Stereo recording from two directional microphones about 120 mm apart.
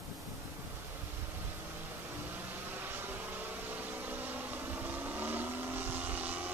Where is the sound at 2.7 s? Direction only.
15° right (ahead or behind).